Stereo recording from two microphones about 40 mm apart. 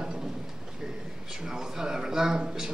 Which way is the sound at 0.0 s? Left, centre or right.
Centre.